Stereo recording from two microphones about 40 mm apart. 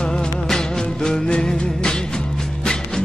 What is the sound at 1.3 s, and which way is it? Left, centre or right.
Music, left.